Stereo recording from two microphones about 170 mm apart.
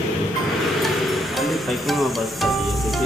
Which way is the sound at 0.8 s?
Centre (ahead or behind).